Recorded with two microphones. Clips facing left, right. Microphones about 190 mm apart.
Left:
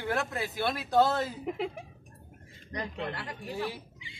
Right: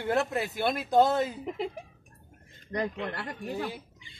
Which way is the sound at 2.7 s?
45° right (ahead or behind).